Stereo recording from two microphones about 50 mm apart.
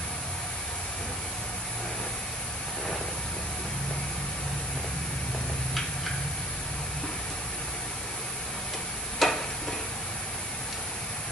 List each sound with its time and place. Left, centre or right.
9.2 s stir: centre